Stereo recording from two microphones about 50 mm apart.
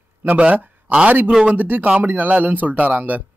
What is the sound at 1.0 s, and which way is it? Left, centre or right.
Speech, right.